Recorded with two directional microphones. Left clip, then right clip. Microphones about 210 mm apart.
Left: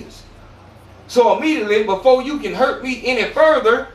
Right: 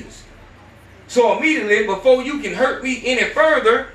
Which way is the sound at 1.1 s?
10° left (ahead or behind).